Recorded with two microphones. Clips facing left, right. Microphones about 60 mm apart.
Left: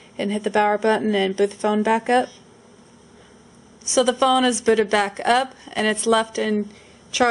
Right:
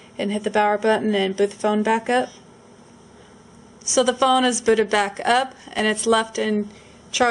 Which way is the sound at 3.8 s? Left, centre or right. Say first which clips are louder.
Even; centre.